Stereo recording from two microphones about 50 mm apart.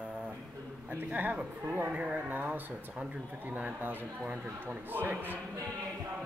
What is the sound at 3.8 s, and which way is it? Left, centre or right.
Speech, right.